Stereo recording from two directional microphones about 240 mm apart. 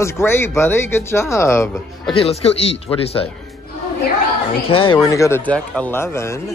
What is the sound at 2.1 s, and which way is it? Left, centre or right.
Speech, left.